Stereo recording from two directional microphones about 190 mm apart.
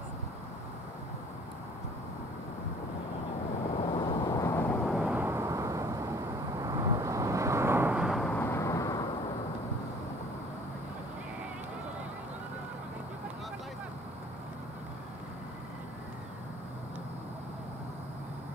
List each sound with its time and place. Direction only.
3.7 s vehicle: 30° left (ahead or behind); by 4.9 s 10° left (ahead or behind)
4.9 s vehicle: 5° right (ahead or behind); by 9.0 s 20° left (ahead or behind)